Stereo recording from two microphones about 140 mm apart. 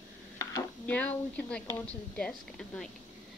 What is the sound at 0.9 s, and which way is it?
A woman's voice, 10° left (ahead or behind).